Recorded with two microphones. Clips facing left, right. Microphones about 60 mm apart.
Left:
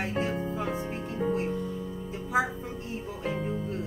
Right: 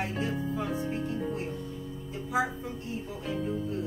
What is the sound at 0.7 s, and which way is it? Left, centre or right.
Speech, left.